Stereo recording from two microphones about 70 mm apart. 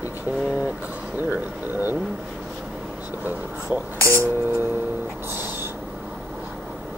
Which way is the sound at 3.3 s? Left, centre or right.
Right.